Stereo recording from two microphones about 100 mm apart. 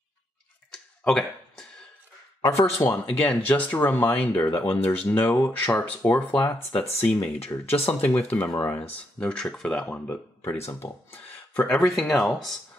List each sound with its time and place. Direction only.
0.7 s a sound: 5° left (ahead or behind)
2.4 s speech: 30° left (ahead or behind)
3.1 s speech: 15° left (ahead or behind)
7.3 s speech: 85° left
8.0 s speech: 15° left (ahead or behind)
10.0 s speech: 25° left (ahead or behind); by 12.5 s centre (ahead or behind)